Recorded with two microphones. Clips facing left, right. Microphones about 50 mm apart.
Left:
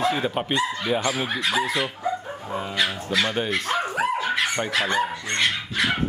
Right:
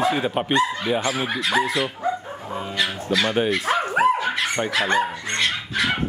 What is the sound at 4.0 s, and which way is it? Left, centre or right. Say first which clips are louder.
Dog: right 8 dB; right.